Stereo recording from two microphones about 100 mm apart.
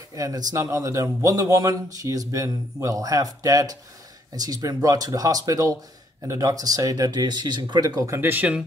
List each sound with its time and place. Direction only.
0.1 s speech: 35° right (ahead or behind); by 8.5 s 20° right (ahead or behind)